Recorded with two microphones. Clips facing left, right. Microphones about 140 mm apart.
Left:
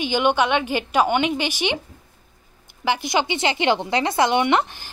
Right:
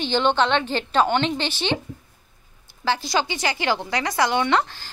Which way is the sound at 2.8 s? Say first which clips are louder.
Left 1 dB; 20° left (ahead or behind).